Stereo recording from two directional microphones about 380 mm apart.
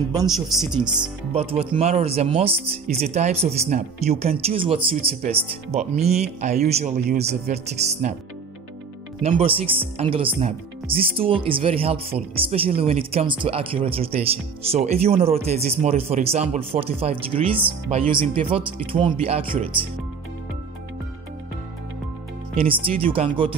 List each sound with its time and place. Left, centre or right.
0.1 s speech: centre
1.3 s speech: centre
9.2 s speech: centre
22.6 s speech: centre